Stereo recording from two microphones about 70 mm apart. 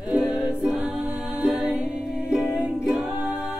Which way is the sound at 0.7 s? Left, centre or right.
Centre.